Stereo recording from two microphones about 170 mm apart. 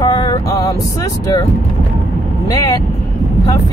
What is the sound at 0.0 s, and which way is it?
Vehicle, 25° left (ahead or behind).